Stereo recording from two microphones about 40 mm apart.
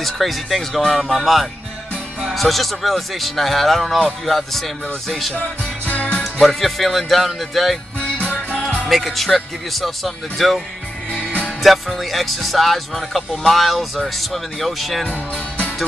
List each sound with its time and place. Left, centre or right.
0.0 s speech: centre
6.0 s music: left
6.4 s speech: centre
8.3 s music: left
8.8 s speech: centre
11.6 s speech: centre